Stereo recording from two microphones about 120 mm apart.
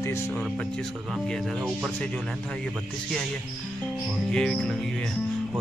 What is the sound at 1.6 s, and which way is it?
Speech, 5° right (ahead or behind).